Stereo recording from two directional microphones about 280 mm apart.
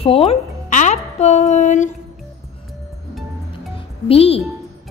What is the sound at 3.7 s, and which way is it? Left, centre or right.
Music, left.